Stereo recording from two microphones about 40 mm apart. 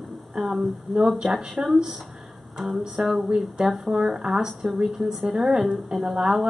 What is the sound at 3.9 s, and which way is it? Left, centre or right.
Speech, right.